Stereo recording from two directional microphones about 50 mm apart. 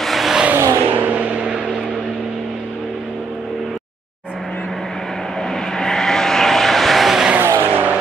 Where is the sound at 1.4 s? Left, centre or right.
Centre.